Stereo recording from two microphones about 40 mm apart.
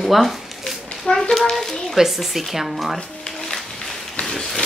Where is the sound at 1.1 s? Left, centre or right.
Left.